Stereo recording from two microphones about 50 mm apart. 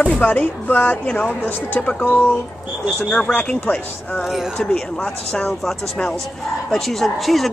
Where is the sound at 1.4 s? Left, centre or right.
Left.